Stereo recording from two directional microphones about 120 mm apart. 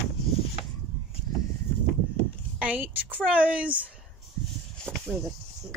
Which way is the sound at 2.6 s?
15° right (ahead or behind).